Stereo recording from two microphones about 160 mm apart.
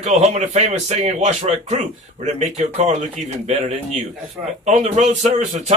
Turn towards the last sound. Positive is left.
turn(degrees=-50)  # may be behind; listen again after turning